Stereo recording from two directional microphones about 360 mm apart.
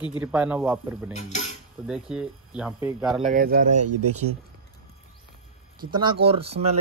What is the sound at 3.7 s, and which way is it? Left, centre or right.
Speech, right.